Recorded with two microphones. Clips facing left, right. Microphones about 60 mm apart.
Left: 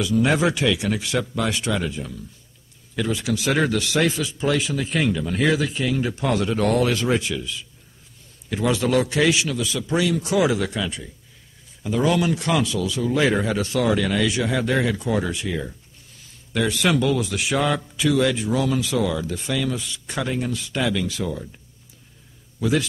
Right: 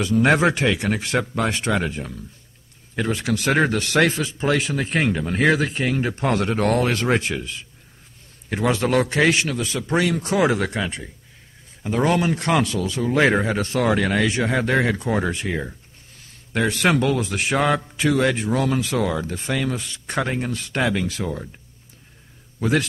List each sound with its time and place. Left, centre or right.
0.0 s speech: right
22.6 s a man's voice: right